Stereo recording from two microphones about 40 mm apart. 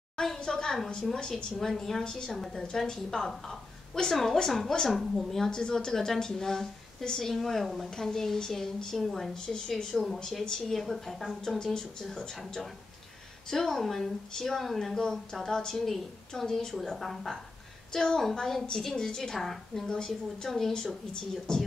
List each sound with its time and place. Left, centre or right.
0.4 s a sound: centre
1.1 s a woman's voice: centre
9.3 s a woman's voice: centre
10.8 s a woman's voice: centre
11.4 s a woman's voice: centre
13.5 s a woman's voice: centre
17.9 s a woman's voice: centre
20.7 s a woman's voice: centre